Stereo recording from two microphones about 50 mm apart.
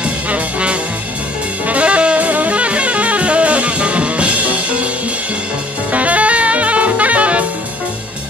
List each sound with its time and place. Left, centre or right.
0.0 s music: right
5.9 s saxophone: right